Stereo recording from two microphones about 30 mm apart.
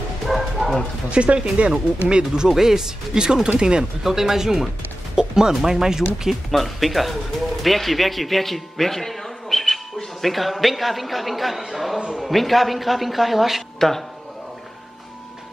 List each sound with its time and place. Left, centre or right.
0.3 s bow-wow: centre
1.1 s speech: right
1.7 s speech: right
2.5 s speech: centre
4.0 s speech: centre
5.1 s music: right
5.5 s speech: centre
6.5 s a man's voice: centre
10.2 s a man's voice: centre
13.7 s speech: centre